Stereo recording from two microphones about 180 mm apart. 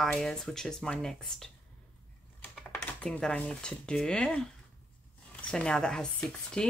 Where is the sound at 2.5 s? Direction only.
5° left (ahead or behind).